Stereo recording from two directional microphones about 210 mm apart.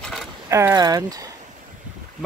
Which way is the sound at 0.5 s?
15° right (ahead or behind).